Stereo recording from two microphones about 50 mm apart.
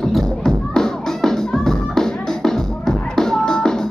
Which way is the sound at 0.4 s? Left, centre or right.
Centre.